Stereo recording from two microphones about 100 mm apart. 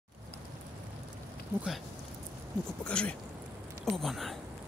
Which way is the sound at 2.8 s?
10° left (ahead or behind).